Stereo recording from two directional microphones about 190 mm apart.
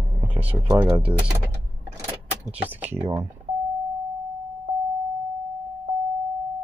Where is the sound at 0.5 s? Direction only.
15° right (ahead or behind).